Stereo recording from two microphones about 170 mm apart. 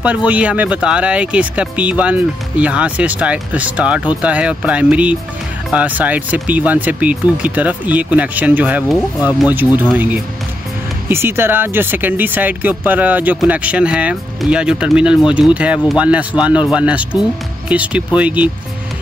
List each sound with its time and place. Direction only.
0.0 s speech: 10° right (ahead or behind)
11.1 s speech: 15° right (ahead or behind)